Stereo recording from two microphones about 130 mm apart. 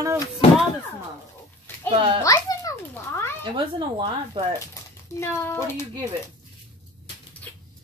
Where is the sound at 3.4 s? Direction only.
40° right (ahead or behind).